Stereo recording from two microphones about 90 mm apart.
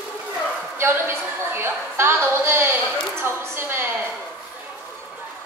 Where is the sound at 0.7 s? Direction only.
25° right (ahead or behind).